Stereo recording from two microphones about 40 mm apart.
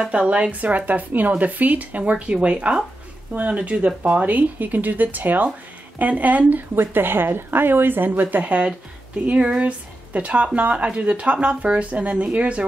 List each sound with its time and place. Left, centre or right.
0.2 s speech: right
0.6 s speech: right
6.7 s a woman's voice: right
9.4 s speech: right